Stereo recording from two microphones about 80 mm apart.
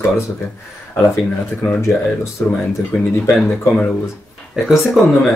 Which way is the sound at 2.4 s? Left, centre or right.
Left.